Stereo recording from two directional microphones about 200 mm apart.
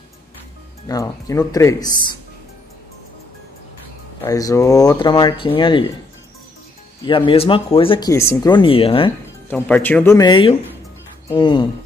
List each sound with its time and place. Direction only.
0.8 s speech: 15° left (ahead or behind)
4.2 s speech: 15° left (ahead or behind)
7.1 s speech: 25° left (ahead or behind)
9.5 s speech: 10° left (ahead or behind); by 11.6 s 25° left (ahead or behind)